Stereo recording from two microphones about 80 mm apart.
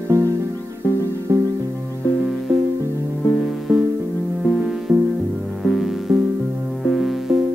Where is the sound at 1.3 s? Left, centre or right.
Right.